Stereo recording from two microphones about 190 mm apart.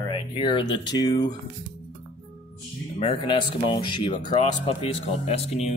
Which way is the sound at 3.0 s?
25° left (ahead or behind).